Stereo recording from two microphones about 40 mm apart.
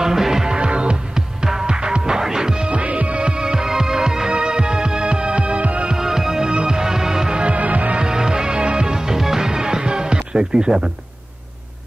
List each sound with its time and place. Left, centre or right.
0.0 s music: centre
0.6 s music: right
5.9 s music: centre
7.4 s music: right
8.0 s music: centre